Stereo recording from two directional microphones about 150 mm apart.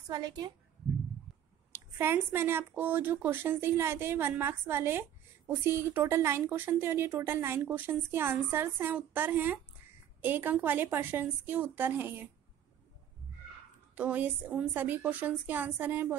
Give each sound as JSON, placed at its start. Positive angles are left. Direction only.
{"t": 0.1, "sound": "a woman's voice", "side_deg": -30}
{"t": 1.7, "sound": "speech", "side_deg": -15}
{"t": 13.9, "sound": "speech", "side_deg": -10}